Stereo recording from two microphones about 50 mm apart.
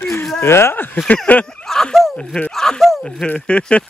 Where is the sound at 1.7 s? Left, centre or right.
Centre.